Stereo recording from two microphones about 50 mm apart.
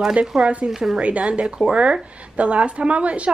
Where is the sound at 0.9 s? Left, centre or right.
Right.